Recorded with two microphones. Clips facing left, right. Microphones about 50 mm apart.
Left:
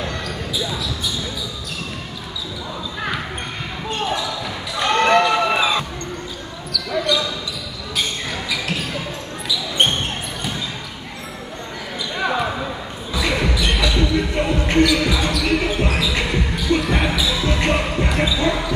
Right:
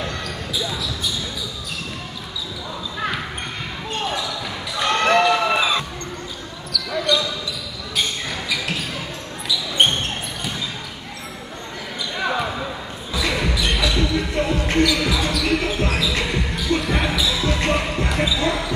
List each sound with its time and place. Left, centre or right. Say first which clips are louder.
0.2 s basketball bounce: left 1 dB; centre
4.1 s basketball bounce: left 2 dB; centre
4.8 s a sound: left 2 dB; centre
5.2 s a sound: left 1 dB; centre
6.7 s basketball bounce: left 1 dB; centre
12.2 s basketball bounce: left 2 dB; centre
13.9 s basketball bounce: left 2 dB; centre
14.9 s basketball bounce: left 2 dB; centre
17.4 s basketball bounce: left 1 dB; left
17.6 s basketball bounce: left 2 dB; centre